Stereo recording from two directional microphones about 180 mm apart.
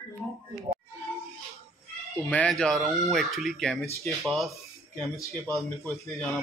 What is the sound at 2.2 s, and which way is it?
Speech, 5° left (ahead or behind).